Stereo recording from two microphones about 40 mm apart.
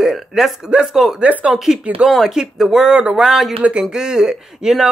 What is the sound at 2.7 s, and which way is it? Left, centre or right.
Speech, centre.